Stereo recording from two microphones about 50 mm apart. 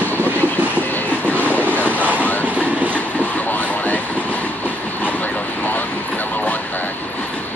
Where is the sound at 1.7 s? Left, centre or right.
Left.